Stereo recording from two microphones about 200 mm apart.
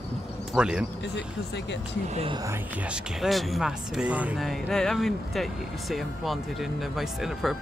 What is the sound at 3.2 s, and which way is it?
Speech, centre (ahead or behind).